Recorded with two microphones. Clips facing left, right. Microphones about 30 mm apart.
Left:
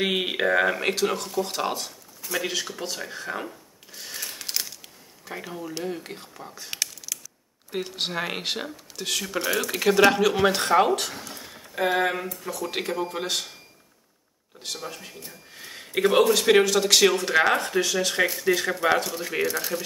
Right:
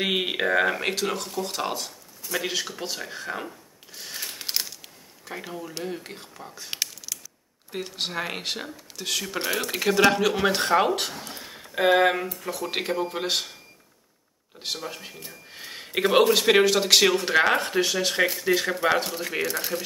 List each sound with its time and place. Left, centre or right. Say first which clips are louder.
0.0 s speech: left 1 dB; centre
4.4 s a sound: right 2 dB; right
4.8 s speech: even; centre
7.7 s speech: left 1 dB; centre
11.0 s speech: right 1 dB; right
12.6 s speech: right 1 dB; centre
14.8 s speech: right 1 dB; centre
15.5 s speech: even; right
16.4 s speech: even; centre
17.6 s speech: right 1 dB; right
17.9 s speech: even; centre